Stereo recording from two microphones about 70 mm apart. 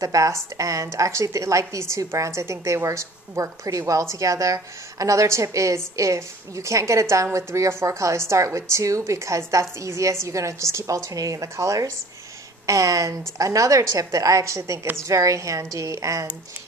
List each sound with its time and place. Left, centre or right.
0.0 s speech: right